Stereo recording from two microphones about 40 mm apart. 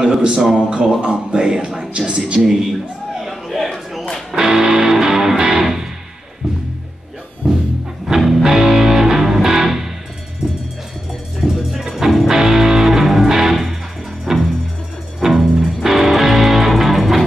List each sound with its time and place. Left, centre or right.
0.0 s a man's voice: centre
0.6 s speech: right
1.7 s a sound: centre
4.4 s music: centre
8.1 s music: centre
11.5 s music: centre